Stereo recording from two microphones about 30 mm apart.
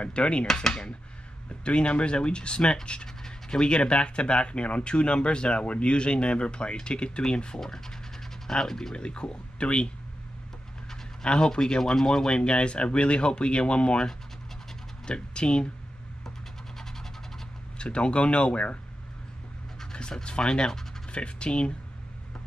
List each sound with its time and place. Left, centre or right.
0.0 s speech: left
0.7 s speech: left
1.6 s speech: left
3.3 s pant: left
3.6 s speech: left
7.5 s scratch: centre
8.6 s speech: centre
8.9 s speech: left
11.2 s speech: left
15.0 s speech: left
16.3 s a sound: centre
17.7 s speech: left
20.2 s speech: left